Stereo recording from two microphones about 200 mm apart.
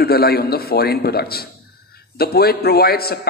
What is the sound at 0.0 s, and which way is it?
A man's voice, 50° left (ahead or behind).